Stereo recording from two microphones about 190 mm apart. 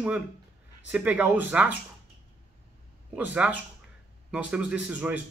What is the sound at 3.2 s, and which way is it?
Speech, 5° right (ahead or behind).